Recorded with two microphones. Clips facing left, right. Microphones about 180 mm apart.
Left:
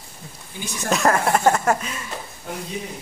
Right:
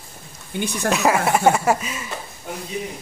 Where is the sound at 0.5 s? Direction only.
65° right (ahead or behind).